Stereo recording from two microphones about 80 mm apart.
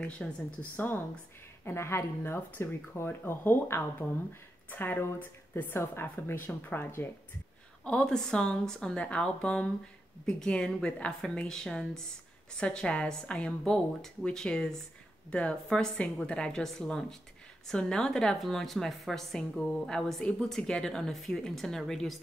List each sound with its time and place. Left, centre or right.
0.2 s a woman's voice: centre
0.6 s speech: left
7.8 s a woman's voice: centre